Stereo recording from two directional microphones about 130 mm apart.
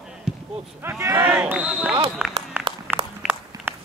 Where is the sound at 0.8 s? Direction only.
20° right (ahead or behind).